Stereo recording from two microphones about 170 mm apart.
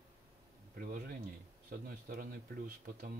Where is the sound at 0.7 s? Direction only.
55° right (ahead or behind).